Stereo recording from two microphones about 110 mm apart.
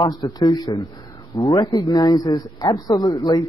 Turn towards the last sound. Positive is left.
turn(degrees=30)  # may be behind; listen again after turning